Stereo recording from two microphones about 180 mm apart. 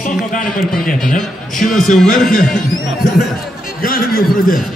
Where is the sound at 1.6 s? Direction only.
Centre (ahead or behind).